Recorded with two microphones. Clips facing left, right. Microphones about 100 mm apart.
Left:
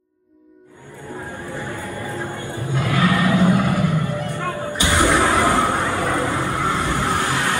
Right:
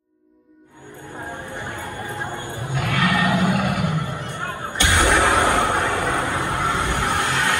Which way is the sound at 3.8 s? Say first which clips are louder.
Left 4 dB; 20° right (ahead or behind).